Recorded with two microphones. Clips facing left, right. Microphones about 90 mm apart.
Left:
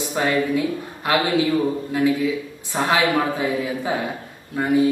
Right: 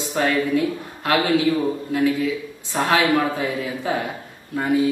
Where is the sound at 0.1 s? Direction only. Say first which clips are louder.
Right 1 dB; 15° left (ahead or behind).